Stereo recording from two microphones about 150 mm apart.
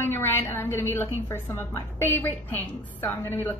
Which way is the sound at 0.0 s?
15° left (ahead or behind).